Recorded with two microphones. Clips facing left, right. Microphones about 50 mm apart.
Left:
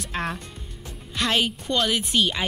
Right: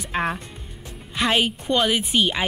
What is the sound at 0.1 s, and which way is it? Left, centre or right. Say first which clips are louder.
A woman's voice: right 5 dB; centre.